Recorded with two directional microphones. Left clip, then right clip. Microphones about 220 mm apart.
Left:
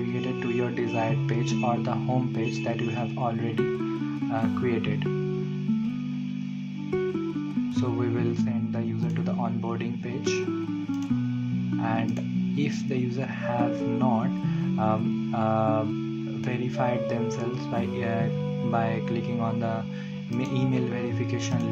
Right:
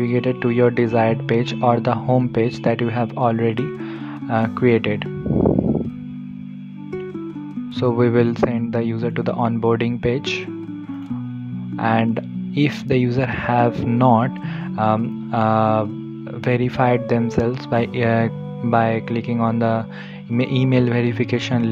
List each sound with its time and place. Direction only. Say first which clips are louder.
0.1 s speech: right 9 dB; 40° right (ahead or behind)
8.0 s speech: right 12 dB; 40° right (ahead or behind)
11.8 s speech: right 12 dB; 40° right (ahead or behind)